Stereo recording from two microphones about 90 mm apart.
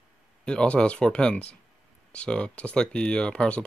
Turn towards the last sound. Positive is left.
turn(degrees=10)  # may be behind; listen again after turning